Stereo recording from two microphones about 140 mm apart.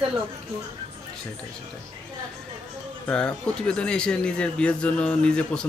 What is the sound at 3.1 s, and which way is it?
A man's voice, 5° left (ahead or behind).